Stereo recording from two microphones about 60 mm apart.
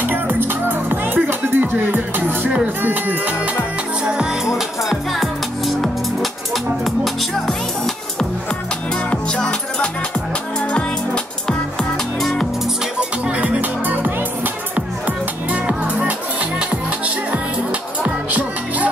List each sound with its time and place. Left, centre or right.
0.0 s music: right
2.8 s speech: right
4.0 s music: centre
4.6 s music: centre
7.3 s music: centre
12.2 s music: centre
13.3 s music: right